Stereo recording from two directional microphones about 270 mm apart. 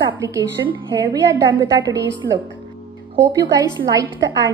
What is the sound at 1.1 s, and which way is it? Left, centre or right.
A woman's voice, centre.